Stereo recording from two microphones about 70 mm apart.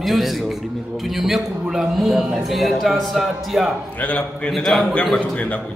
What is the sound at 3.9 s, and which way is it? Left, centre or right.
Speech, left.